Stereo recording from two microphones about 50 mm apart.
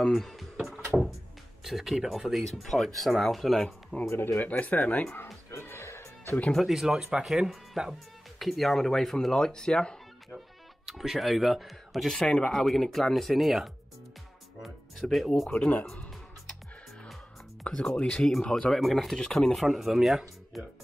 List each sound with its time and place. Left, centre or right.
0.0 s a sound: centre
1.6 s speech: centre
4.4 s speech: left
5.7 s music: left
6.7 s speech: centre
10.9 s speech: centre
12.1 s speech: centre
14.6 s music: centre
17.6 s speech: centre
18.7 s speech: centre
19.5 s speech: centre